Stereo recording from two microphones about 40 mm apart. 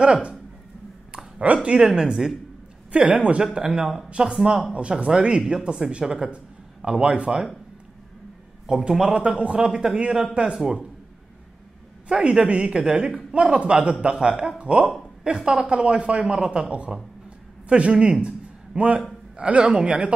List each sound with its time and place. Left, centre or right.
0.0 s speech: right
1.4 s a man's voice: right
1.8 s speech: centre
2.9 s a man's voice: right
3.6 s speech: centre
8.6 s a man's voice: right
9.7 s speech: centre
12.1 s speech: centre
13.3 s speech: right
16.6 s a man's voice: right